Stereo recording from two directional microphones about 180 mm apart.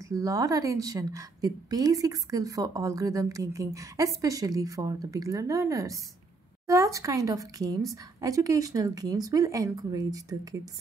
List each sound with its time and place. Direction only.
0.1 s a woman's voice: 20° right (ahead or behind)